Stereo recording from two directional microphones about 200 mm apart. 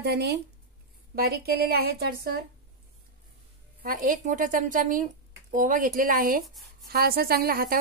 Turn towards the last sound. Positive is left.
turn(degrees=-45)  # may be behind; listen again after turning